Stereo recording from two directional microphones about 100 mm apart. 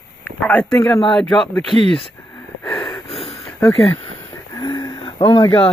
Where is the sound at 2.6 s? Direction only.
25° left (ahead or behind).